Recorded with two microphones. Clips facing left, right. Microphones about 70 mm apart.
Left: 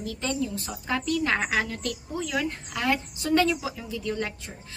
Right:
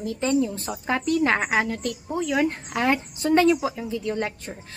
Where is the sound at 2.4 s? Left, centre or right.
Right.